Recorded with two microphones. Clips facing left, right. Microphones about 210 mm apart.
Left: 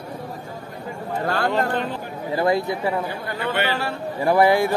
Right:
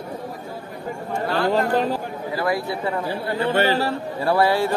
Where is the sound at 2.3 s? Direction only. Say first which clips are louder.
Left 4 dB; 25° left (ahead or behind).